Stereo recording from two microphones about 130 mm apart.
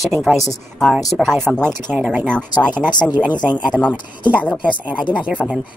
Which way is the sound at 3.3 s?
35° left (ahead or behind).